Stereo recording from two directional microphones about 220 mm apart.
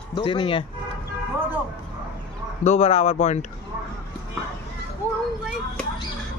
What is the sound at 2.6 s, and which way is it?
Speech, 30° left (ahead or behind).